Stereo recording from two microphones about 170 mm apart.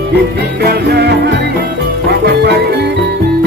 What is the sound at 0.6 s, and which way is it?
Music, 75° right (ahead or behind).